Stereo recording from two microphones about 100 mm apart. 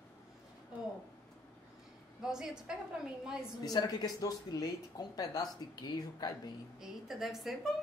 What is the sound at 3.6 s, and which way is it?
Speech, 40° left (ahead or behind).